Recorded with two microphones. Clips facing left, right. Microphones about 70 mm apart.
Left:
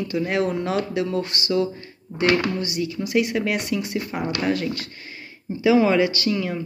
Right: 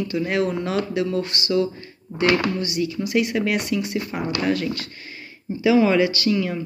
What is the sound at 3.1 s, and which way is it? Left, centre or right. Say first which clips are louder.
Speech: left 1 dB; centre.